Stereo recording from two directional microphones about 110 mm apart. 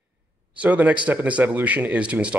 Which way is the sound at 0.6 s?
15° right (ahead or behind).